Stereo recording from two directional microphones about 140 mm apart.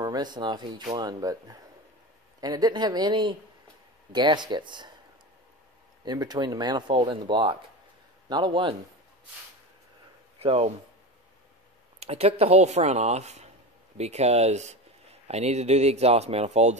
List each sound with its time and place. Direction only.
0.0 s speech: 30° right (ahead or behind)
6.0 s speech: 30° right (ahead or behind)
10.4 s speech: 45° right (ahead or behind)
12.0 s speech: 45° right (ahead or behind)